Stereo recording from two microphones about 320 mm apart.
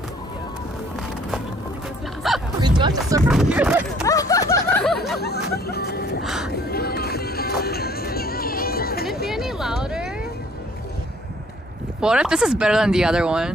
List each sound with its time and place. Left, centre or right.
2.3 s music: centre
2.6 s music: centre
3.2 s music: centre
4.0 s snicker: centre
5.5 s vehicle: left
6.2 s a sound: centre
6.5 s music: left
9.3 s a sound: centre
12.0 s speech: centre